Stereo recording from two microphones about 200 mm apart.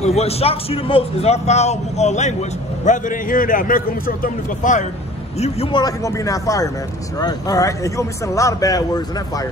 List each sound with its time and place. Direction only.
0.0 s a man's voice: 30° left (ahead or behind)
5.4 s a man's voice: 25° left (ahead or behind)